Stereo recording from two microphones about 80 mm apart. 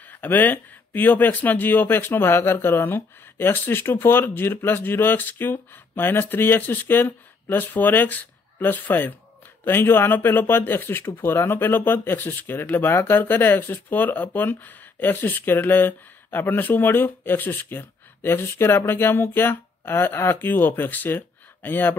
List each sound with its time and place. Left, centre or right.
0.1 s speech: left